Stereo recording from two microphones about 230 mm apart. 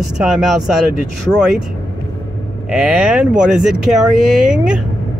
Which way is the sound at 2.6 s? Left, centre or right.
Centre.